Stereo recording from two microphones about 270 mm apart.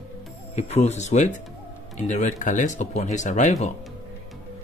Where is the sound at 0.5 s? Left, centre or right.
Left.